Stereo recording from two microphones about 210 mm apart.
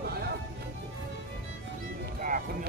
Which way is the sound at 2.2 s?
40° right (ahead or behind).